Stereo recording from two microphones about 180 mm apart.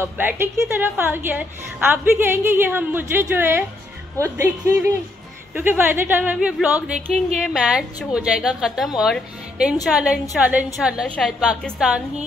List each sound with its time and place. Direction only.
0.0 s a woman's voice: 10° right (ahead or behind)